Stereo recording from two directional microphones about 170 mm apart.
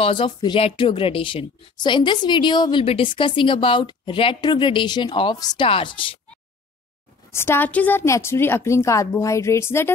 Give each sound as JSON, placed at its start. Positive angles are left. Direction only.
{"t": 0.0, "sound": "a woman's voice", "side_deg": 30}
{"t": 7.2, "sound": "a woman's voice", "side_deg": 15}